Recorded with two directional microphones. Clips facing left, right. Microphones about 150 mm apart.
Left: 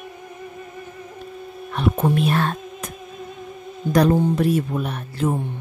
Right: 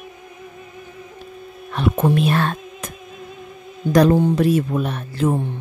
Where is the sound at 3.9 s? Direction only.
90° right.